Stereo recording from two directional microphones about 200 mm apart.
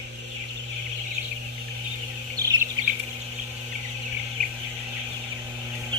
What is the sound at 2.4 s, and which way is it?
Bird, 15° right (ahead or behind).